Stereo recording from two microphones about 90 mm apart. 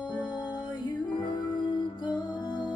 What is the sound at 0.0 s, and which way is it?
Music, 55° left (ahead or behind).